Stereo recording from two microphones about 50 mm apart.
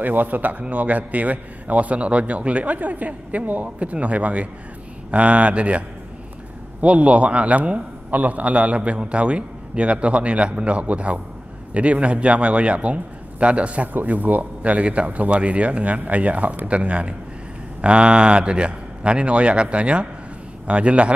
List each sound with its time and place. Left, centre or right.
0.0 s a man's voice: right